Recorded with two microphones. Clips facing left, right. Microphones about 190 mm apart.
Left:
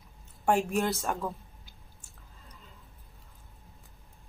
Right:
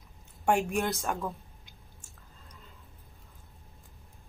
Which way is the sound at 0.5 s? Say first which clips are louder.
Left 1 dB; centre (ahead or behind).